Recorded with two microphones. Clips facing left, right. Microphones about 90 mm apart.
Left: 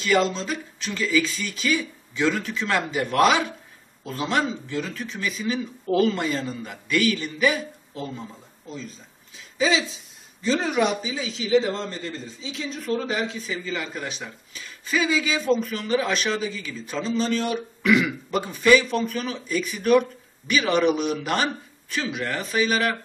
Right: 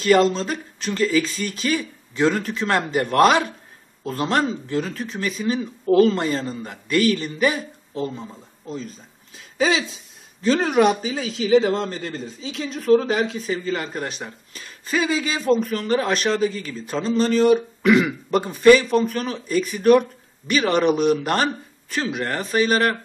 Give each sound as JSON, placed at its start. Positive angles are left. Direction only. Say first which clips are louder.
{"t": 0.3, "sound": "speech", "louder": "right 4 dB", "side_deg": -40}
{"t": 9.6, "sound": "a man's voice", "louder": "right 2 dB", "side_deg": -55}